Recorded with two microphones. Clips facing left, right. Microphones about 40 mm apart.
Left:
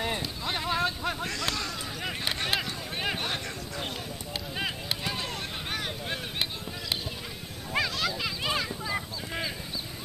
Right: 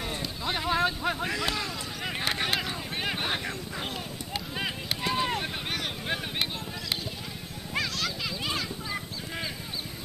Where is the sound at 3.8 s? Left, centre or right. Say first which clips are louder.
Right 1 dB; centre.